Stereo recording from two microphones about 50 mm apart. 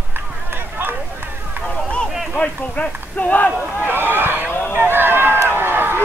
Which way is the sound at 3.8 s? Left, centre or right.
Right.